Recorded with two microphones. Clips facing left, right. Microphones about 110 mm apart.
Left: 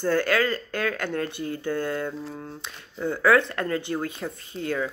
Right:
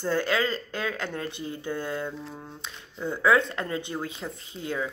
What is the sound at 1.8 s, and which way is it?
Mantra, 15° right (ahead or behind).